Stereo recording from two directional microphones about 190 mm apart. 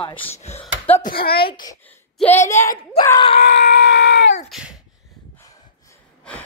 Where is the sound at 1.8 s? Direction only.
10° left (ahead or behind).